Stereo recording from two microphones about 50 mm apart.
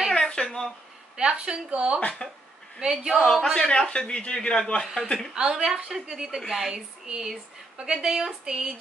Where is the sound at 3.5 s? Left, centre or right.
Centre.